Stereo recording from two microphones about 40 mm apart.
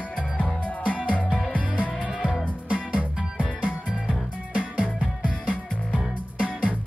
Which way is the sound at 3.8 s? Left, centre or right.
Centre.